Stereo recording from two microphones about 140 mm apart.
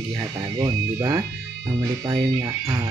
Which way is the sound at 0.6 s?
25° right (ahead or behind).